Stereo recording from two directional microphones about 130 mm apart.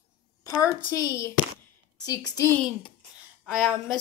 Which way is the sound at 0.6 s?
25° left (ahead or behind).